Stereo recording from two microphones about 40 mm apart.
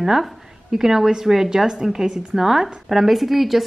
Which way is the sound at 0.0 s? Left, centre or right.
Centre.